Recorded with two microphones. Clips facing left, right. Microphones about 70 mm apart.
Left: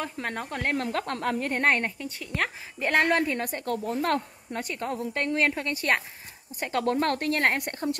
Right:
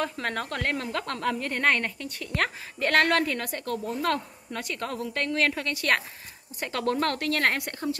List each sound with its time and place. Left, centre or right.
0.0 s speech: centre
0.7 s a woman's voice: left
2.0 s speech: centre
2.9 s a woman's voice: centre